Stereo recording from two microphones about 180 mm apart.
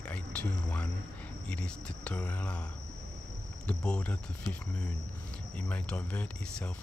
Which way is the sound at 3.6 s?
5° left (ahead or behind).